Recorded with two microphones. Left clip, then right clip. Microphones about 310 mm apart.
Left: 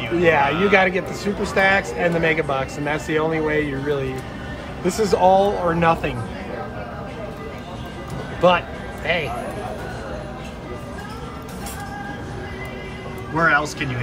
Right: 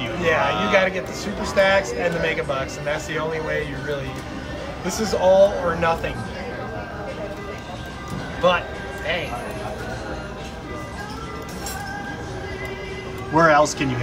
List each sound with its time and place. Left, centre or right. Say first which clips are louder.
0.2 s a man's voice: left 3 dB; left
4.8 s a man's voice: left 3 dB; left
8.4 s music: left 3 dB; left
13.4 s speech: right 3 dB; centre